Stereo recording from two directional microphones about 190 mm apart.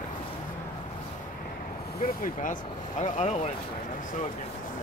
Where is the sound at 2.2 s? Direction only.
45° left (ahead or behind).